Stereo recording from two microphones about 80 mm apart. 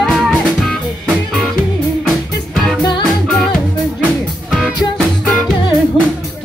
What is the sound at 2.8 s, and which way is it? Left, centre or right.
Music, left.